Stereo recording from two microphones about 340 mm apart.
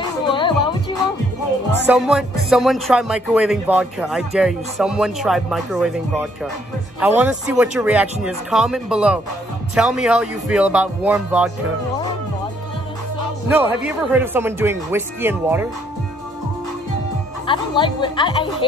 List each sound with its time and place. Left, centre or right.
0.0 s music: centre
1.9 s speech: centre
13.5 s speech: centre
17.5 s speech: centre